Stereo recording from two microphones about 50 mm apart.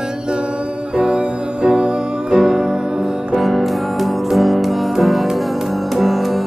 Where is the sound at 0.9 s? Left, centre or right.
Right.